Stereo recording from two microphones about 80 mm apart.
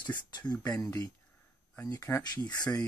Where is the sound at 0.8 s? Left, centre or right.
Left.